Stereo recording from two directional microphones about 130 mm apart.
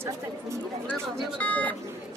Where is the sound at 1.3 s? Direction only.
10° left (ahead or behind).